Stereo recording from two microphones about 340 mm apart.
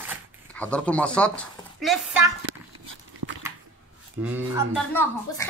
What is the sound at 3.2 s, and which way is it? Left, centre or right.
Typing, right.